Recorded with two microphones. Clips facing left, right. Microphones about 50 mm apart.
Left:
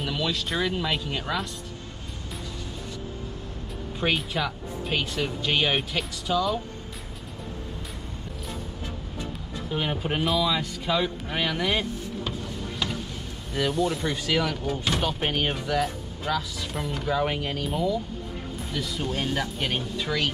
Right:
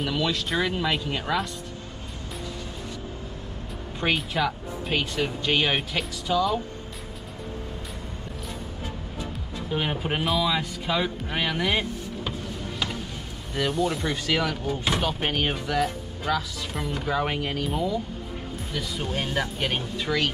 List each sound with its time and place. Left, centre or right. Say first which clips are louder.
0.0 s speech: right 2 dB; centre
4.0 s speech: right 2 dB; centre
9.7 s speech: right 1 dB; centre
12.3 s music: even; centre
13.6 s speech: even; centre